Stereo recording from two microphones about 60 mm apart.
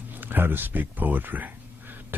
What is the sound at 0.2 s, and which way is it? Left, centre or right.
Speech, right.